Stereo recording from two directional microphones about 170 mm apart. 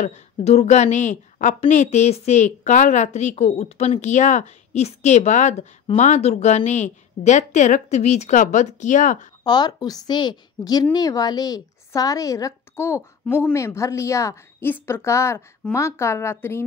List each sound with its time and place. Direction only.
0.0 s a woman's voice: 40° left (ahead or behind)
9.4 s a woman's voice: 25° left (ahead or behind)